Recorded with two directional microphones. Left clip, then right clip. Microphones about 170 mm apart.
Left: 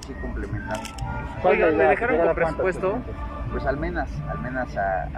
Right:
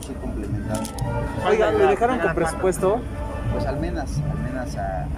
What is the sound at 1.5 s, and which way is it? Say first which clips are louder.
Speech: right 2 dB; 15° right (ahead or behind).